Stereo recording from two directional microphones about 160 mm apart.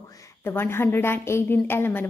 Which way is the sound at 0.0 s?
20° left (ahead or behind).